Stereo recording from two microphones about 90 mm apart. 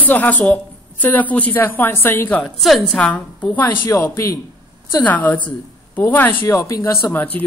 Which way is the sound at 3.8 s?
35° left (ahead or behind).